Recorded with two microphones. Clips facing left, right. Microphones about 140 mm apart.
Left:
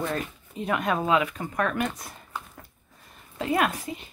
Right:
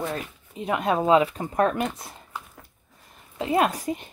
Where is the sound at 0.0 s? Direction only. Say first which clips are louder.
Left 1 dB; 15° right (ahead or behind); by 1.9 s 30° right (ahead or behind).